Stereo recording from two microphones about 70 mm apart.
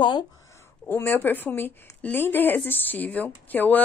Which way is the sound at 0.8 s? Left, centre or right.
Left.